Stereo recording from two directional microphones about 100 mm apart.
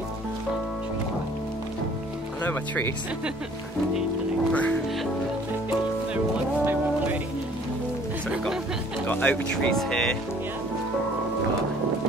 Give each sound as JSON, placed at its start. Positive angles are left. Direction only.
{"t": 4.5, "sound": "speech", "side_deg": 15}
{"t": 6.1, "sound": "music", "side_deg": -20}
{"t": 9.0, "sound": "speech", "side_deg": 15}